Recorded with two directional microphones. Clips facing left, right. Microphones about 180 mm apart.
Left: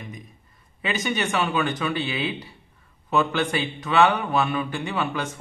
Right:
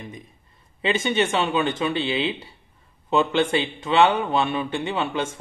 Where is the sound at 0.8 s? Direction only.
25° right (ahead or behind).